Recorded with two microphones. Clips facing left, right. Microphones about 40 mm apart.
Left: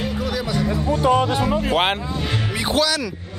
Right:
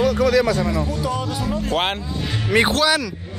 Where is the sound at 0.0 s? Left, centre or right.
Right.